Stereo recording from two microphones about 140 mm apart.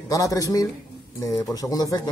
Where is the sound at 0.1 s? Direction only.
25° left (ahead or behind).